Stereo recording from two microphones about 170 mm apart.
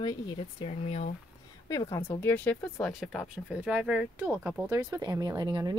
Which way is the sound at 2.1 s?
10° left (ahead or behind).